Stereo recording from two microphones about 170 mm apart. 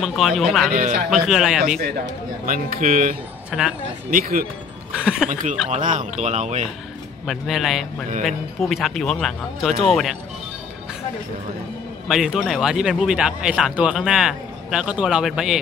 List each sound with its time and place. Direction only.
0.0 s speech: centre (ahead or behind)
0.7 s speech: 45° right (ahead or behind)
1.1 s speech: centre (ahead or behind)
2.4 s speech: 50° right (ahead or behind)
3.5 s speech: centre (ahead or behind)
4.1 s speech: 60° right (ahead or behind)
5.0 s speech: 5° right (ahead or behind)
5.3 s speech: 45° right (ahead or behind)
7.2 s speech: centre (ahead or behind)
12.1 s speech: centre (ahead or behind)